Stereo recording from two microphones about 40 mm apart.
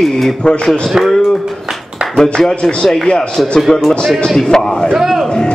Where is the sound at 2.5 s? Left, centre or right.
Left.